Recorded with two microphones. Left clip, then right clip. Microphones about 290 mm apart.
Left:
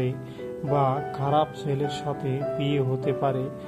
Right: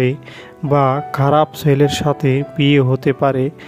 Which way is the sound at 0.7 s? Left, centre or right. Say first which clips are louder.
Right 9 dB; right.